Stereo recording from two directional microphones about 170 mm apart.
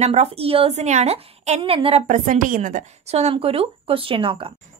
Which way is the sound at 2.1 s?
50° right (ahead or behind).